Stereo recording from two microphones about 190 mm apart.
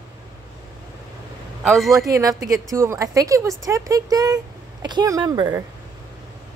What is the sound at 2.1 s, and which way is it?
A woman's voice, 20° right (ahead or behind).